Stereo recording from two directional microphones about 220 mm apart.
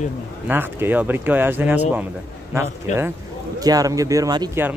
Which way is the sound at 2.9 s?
35° left (ahead or behind).